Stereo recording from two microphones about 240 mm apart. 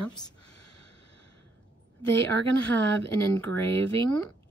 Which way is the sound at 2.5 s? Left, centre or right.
Centre.